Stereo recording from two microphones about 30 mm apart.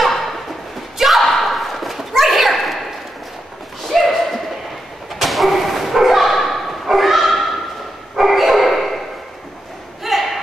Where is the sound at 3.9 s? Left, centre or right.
Centre.